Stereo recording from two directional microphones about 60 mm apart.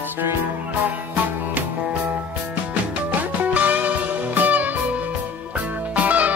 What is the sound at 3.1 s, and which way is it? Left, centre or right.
Music, right.